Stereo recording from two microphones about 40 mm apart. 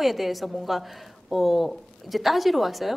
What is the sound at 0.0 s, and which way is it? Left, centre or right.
A woman's voice, centre.